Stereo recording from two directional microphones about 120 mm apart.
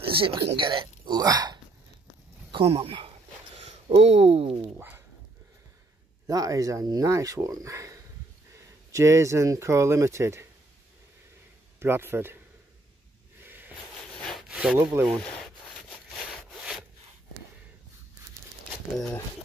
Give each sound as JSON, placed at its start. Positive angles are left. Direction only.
{"t": 0.0, "sound": "speech", "side_deg": -45}
{"t": 2.5, "sound": "speech", "side_deg": -55}
{"t": 3.5, "sound": "speech", "side_deg": -65}
{"t": 4.7, "sound": "a sound", "side_deg": -15}
{"t": 6.2, "sound": "speech", "side_deg": -30}
{"t": 11.8, "sound": "speech", "side_deg": -20}
{"t": 13.4, "sound": "a sound", "side_deg": -15}
{"t": 14.1, "sound": "sawing", "side_deg": 5}
{"t": 14.5, "sound": "sawing", "side_deg": -5}
{"t": 15.0, "sound": "sawing", "side_deg": 5}